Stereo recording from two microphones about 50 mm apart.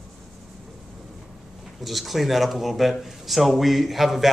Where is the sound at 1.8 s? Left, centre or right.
Centre.